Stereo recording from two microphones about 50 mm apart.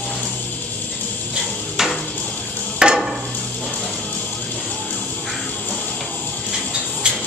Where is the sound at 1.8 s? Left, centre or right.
Centre.